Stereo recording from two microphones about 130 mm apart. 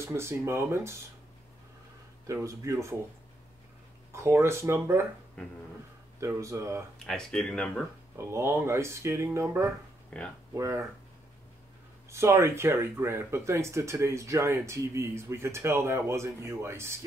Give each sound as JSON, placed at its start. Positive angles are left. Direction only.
{"t": 0.0, "sound": "speech", "side_deg": -20}
{"t": 2.4, "sound": "speech", "side_deg": -25}
{"t": 4.1, "sound": "speech", "side_deg": -20}
{"t": 6.2, "sound": "speech", "side_deg": -25}
{"t": 7.1, "sound": "speech", "side_deg": 5}
{"t": 8.2, "sound": "speech", "side_deg": -20}
{"t": 10.1, "sound": "speech", "side_deg": 10}
{"t": 10.5, "sound": "speech", "side_deg": -25}
{"t": 12.1, "sound": "speech", "side_deg": -20}